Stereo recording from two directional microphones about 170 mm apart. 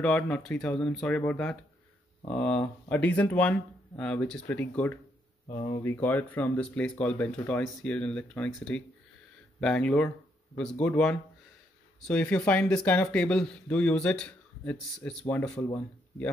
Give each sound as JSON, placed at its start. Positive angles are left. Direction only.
{"t": 0.0, "sound": "speech", "side_deg": 5}
{"t": 5.5, "sound": "speech", "side_deg": 25}
{"t": 5.9, "sound": "speech", "side_deg": 10}